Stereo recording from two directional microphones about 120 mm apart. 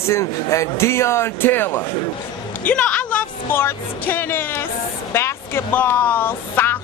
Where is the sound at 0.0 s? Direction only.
25° left (ahead or behind).